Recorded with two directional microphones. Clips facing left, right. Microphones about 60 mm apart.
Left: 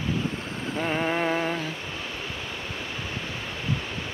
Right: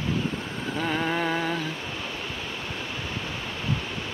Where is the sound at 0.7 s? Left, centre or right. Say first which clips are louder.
Left 1 dB; left.